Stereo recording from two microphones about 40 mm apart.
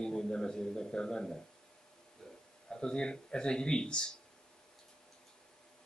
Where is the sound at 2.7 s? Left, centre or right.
Left.